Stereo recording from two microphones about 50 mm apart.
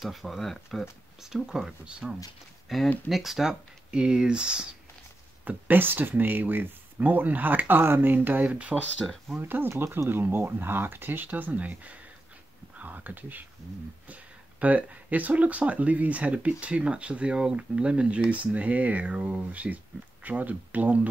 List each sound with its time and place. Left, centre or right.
0.0 s speech: centre
1.2 s speech: centre
2.7 s speech: centre
5.4 s speech: right
9.8 s speech: right
10.0 s speech: right
11.2 s speech: right
18.3 s speech: right